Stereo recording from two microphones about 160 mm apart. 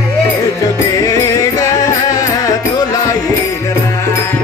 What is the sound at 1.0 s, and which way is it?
Music, 20° left (ahead or behind).